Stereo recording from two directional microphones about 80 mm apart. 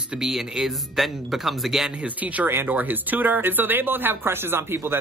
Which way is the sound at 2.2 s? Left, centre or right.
Right.